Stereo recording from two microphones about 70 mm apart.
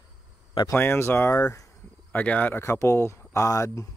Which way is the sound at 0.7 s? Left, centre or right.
Left.